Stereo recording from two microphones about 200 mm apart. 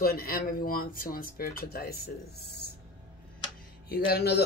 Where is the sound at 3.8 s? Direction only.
50° left (ahead or behind).